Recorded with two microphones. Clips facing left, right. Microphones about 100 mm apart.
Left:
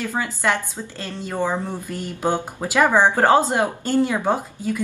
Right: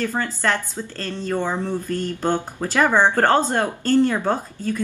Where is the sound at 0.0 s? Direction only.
10° left (ahead or behind).